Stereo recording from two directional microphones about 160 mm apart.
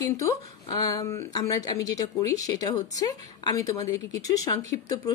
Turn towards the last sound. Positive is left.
turn(degrees=20)  # may be behind; listen again after turning